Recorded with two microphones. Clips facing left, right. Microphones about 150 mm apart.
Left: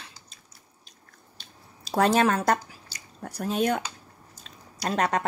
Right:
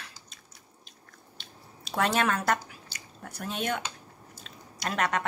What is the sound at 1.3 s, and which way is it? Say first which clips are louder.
Squish: right 2 dB; 35° left (ahead or behind).